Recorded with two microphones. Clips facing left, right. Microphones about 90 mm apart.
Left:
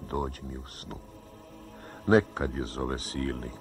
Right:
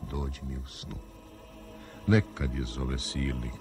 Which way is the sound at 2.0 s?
40° left (ahead or behind).